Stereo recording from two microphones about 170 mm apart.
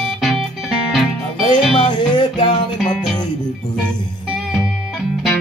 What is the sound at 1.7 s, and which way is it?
Music, 30° left (ahead or behind).